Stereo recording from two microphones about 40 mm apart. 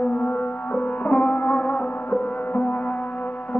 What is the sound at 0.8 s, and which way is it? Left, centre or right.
Music, left.